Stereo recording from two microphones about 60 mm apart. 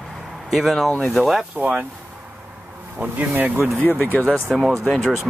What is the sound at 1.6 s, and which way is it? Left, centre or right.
Speech, right.